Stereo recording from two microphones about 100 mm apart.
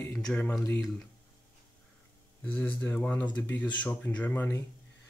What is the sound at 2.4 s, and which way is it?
Speech, 15° left (ahead or behind).